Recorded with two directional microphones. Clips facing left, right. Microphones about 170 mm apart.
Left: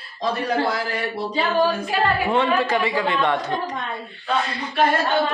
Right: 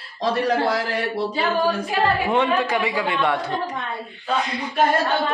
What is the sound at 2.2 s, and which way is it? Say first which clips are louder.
Speech: even; 15° right (ahead or behind).